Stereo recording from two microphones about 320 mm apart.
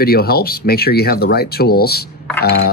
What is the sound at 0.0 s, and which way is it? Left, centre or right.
Speech, left.